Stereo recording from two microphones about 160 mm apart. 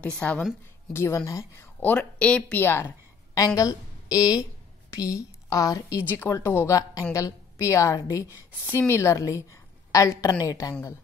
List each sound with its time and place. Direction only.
0.2 s a woman's voice: 10° left (ahead or behind)